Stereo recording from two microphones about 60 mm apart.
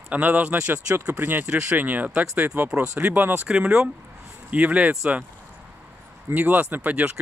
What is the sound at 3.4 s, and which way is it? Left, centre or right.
Speech, centre.